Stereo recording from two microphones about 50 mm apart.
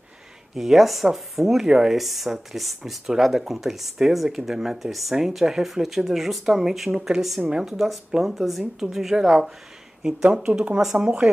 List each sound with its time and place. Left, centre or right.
0.6 s speech: centre; by 10.8 s right
10.8 s speech: centre